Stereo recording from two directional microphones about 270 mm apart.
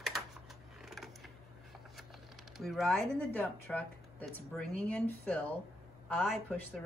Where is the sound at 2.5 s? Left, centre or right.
Centre.